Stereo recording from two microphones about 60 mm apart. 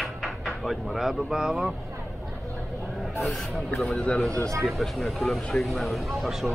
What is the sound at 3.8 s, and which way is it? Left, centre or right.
Speech, centre.